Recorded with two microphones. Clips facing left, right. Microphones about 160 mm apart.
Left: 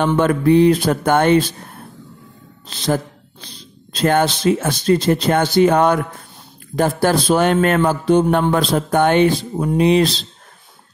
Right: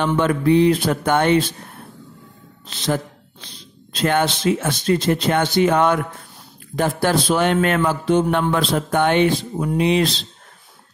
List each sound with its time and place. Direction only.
0.0 s speech: 45° left (ahead or behind)
2.7 s a sound: 35° left (ahead or behind)
3.9 s a man's voice: 40° left (ahead or behind)